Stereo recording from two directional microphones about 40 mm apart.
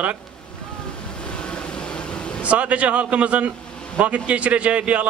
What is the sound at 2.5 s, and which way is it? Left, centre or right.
A man's voice, right.